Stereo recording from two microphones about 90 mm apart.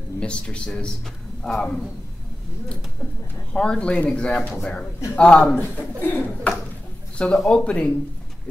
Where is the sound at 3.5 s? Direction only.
10° left (ahead or behind).